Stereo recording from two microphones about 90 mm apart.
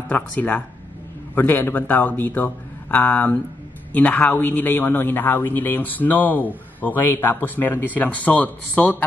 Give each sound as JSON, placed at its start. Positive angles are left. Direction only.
{"t": 0.1, "sound": "a man's voice", "side_deg": 20}